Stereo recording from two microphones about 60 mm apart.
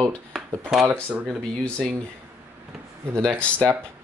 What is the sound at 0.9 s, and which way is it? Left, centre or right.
Speech, right.